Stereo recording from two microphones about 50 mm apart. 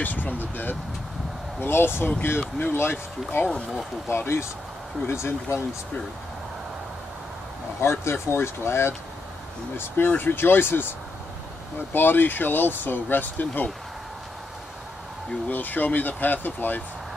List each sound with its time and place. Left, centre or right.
0.0 s speech: left
1.6 s speech: left
7.8 s speech: left
10.0 s speech: left
15.4 s speech: left